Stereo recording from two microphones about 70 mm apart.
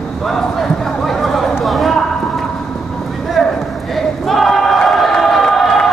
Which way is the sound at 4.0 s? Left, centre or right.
Centre.